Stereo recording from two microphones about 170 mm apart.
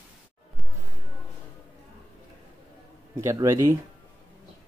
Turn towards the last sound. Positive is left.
turn(degrees=-15)  # may be behind; listen again after turning